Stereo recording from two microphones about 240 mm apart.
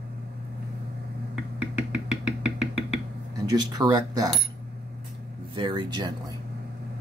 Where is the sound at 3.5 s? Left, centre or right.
Centre.